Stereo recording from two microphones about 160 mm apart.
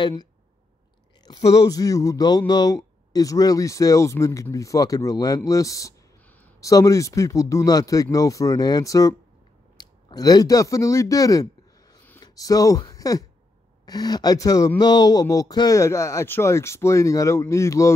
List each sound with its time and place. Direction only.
0.0 s speech: 25° left (ahead or behind)